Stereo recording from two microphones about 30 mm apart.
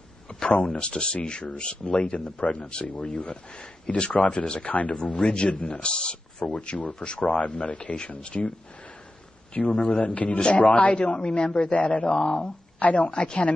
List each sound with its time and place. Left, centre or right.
0.3 s a sound: left
0.7 s speech: left
3.9 s a man's voice: left
5.1 s speech: left
7.2 s a man's voice: left
11.1 s a man's voice: left
12.2 s speech: left
12.8 s a man's voice: left